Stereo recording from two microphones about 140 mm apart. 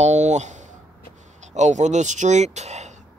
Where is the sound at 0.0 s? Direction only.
55° right (ahead or behind).